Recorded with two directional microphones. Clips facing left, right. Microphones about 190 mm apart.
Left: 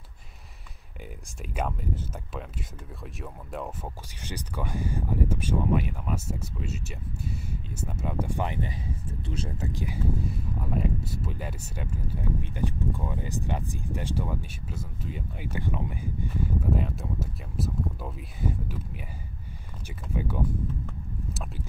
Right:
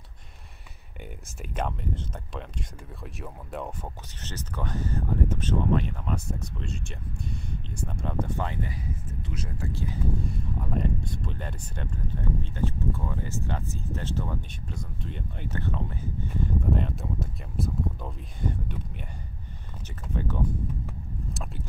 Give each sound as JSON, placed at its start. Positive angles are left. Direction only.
{"t": 1.4, "sound": "speech", "side_deg": 5}
{"t": 4.2, "sound": "speech", "side_deg": 10}
{"t": 9.3, "sound": "speech", "side_deg": 30}
{"t": 9.7, "sound": "speech", "side_deg": 15}
{"t": 10.2, "sound": "speech", "side_deg": 5}
{"t": 16.7, "sound": "speech", "side_deg": 0}
{"t": 20.2, "sound": "speech", "side_deg": 10}
{"t": 21.3, "sound": "boat", "side_deg": 0}